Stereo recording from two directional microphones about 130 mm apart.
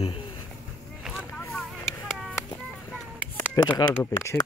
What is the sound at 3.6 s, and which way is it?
Speech, 30° left (ahead or behind).